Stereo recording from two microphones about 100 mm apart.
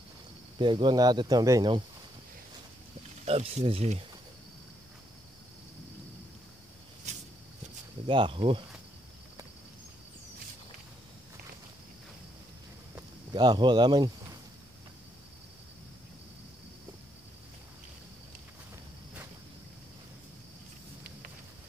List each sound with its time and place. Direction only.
0.6 s speech: 50° right (ahead or behind); by 1.6 s 35° right (ahead or behind)
3.3 s speech: 90° right
8.1 s speech: 60° right (ahead or behind)
13.3 s speech: 45° right (ahead or behind)